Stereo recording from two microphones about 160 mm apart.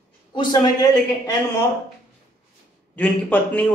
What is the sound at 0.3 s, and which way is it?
A man's voice, 25° left (ahead or behind).